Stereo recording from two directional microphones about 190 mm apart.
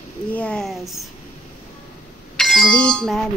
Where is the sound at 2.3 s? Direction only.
5° left (ahead or behind).